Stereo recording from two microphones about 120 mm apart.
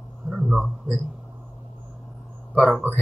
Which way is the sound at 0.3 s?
5° right (ahead or behind).